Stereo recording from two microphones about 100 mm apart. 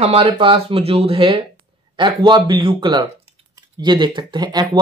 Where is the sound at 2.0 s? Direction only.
50° right (ahead or behind).